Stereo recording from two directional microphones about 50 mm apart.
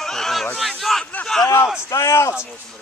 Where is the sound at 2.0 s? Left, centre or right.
Left.